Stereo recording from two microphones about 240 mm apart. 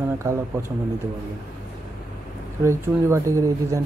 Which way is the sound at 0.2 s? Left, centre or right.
Centre.